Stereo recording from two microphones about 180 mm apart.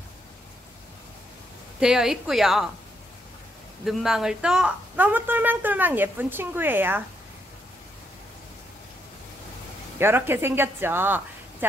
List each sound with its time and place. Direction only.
1.8 s a woman's voice: 5° right (ahead or behind)
3.8 s speech: centre (ahead or behind)
9.9 s speech: 10° right (ahead or behind)